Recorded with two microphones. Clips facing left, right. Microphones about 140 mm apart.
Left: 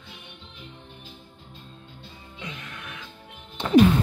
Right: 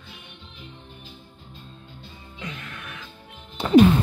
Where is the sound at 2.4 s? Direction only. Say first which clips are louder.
Right 2 dB; 20° left (ahead or behind).